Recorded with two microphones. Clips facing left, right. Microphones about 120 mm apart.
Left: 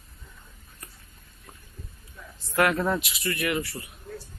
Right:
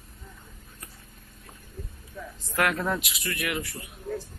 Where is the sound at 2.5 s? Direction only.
Centre (ahead or behind).